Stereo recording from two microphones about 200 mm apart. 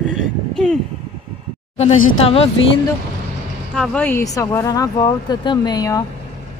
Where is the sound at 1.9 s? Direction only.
90° left.